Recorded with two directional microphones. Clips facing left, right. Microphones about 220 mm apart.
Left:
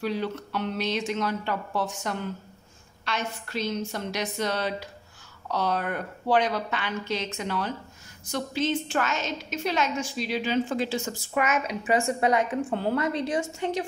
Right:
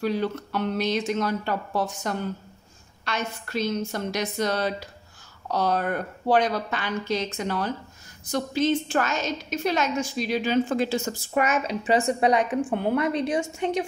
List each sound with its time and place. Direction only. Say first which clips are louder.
0.0 s a woman's voice: right 3 dB; 45° right (ahead or behind)
12.0 s a woman's voice: right 2 dB; 20° right (ahead or behind)